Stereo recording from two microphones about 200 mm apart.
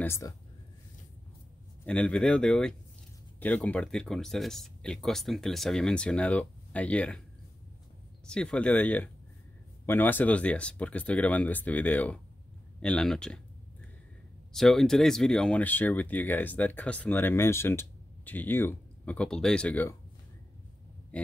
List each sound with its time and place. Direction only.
0.0 s speech: 15° left (ahead or behind)
1.9 s speech: 5° left (ahead or behind)
8.3 s speech: 5° left (ahead or behind)
14.5 s speech: centre (ahead or behind)
21.1 s a sound: 5° left (ahead or behind)